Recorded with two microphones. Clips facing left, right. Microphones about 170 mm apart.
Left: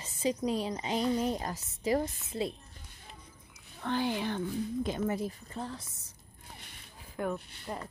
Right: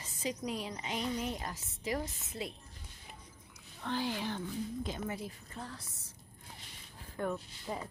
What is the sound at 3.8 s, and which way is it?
Speech, 55° left (ahead or behind).